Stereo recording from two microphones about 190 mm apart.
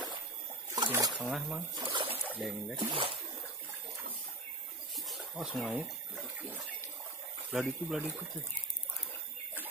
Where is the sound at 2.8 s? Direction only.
30° right (ahead or behind).